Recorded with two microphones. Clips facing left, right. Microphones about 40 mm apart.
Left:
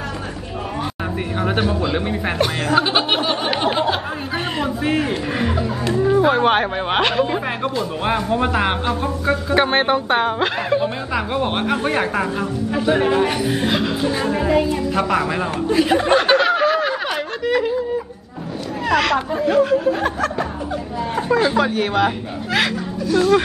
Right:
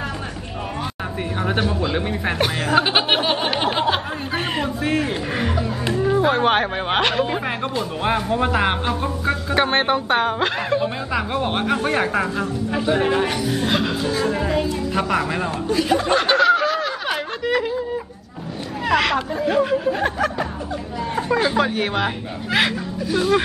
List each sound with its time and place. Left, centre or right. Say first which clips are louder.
1.4 s speech: left 2 dB; centre
2.4 s speech: even; centre
3.4 s speech: left 1 dB; centre
13.3 s a child's voice: left 2 dB; centre
13.7 s a child's voice: left 2 dB; centre
15.7 s a child's voice: left 3 dB; left
16.4 s snicker: left 1 dB; left
17.1 s a sound: left 1 dB; centre
18.9 s speech: left 1 dB; centre
21.3 s speech: left 2 dB; centre